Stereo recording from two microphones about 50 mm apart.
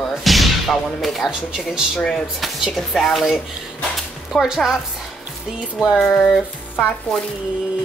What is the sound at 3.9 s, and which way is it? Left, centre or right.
Dog, centre.